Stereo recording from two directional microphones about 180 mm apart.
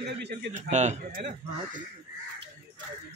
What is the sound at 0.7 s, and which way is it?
Speech, 40° right (ahead or behind).